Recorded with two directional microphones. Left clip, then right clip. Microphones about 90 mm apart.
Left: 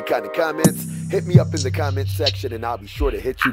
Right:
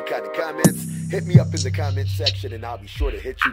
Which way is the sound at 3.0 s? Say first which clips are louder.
Left 7 dB; 25° left (ahead or behind).